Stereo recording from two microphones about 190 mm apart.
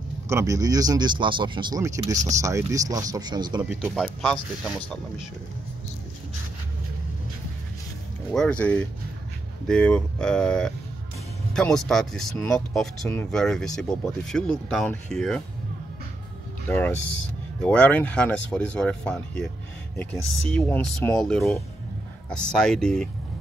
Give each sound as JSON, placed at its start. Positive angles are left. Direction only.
{"t": 0.3, "sound": "speech", "side_deg": -15}
{"t": 2.1, "sound": "speech", "side_deg": -40}
{"t": 2.4, "sound": "speech", "side_deg": -15}
{"t": 3.6, "sound": "speech", "side_deg": -5}
{"t": 8.3, "sound": "speech", "side_deg": 5}
{"t": 16.6, "sound": "speech", "side_deg": 10}